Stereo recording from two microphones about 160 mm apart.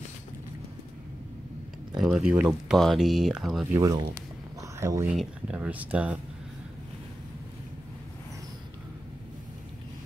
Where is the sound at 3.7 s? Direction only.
20° right (ahead or behind).